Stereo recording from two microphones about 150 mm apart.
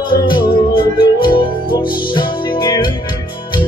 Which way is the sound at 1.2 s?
30° left (ahead or behind).